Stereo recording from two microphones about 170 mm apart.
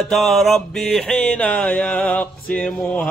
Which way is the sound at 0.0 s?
Centre (ahead or behind).